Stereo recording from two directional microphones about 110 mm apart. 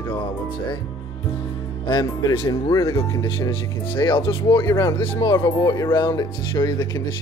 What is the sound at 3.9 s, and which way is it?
Speech, 50° left (ahead or behind).